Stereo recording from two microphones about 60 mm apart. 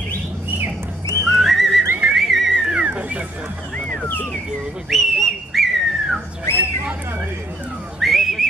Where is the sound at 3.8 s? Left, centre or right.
Centre.